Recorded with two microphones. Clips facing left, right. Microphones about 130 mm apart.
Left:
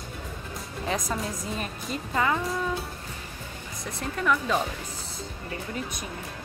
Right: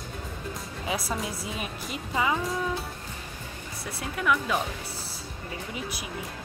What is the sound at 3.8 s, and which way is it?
Speech, 5° right (ahead or behind).